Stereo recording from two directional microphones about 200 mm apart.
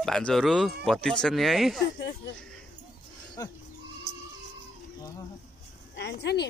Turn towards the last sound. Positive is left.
turn(degrees=55)  # may be behind; listen again after turning